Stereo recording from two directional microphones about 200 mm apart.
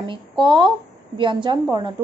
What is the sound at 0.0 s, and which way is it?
A woman's voice, 20° right (ahead or behind).